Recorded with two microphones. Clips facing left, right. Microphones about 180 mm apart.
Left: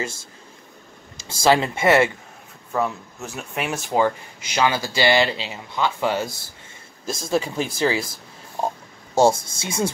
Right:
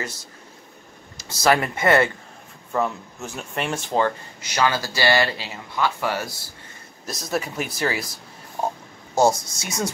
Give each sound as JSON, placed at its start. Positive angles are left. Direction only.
{"t": 1.1, "sound": "speech", "side_deg": 25}
{"t": 2.7, "sound": "speech", "side_deg": 0}
{"t": 9.1, "sound": "speech", "side_deg": 30}